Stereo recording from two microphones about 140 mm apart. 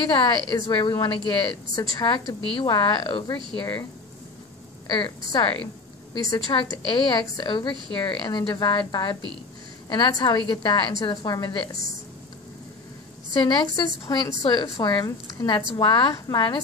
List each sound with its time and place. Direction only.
0.1 s a woman's voice: 35° left (ahead or behind)
4.9 s a woman's voice: 35° left (ahead or behind)
13.7 s a woman's voice: 30° left (ahead or behind)